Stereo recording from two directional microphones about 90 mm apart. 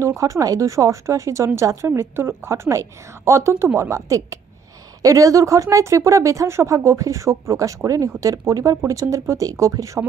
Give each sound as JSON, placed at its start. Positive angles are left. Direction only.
{"t": 0.0, "sound": "speech", "side_deg": -35}